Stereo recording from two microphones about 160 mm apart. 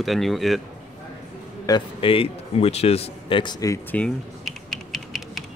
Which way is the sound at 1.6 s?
30° left (ahead or behind).